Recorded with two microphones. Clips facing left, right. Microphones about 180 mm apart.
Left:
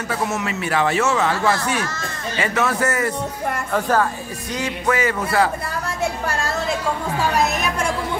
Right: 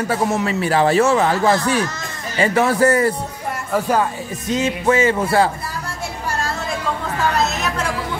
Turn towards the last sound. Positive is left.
turn(degrees=10)  # may be behind; listen again after turning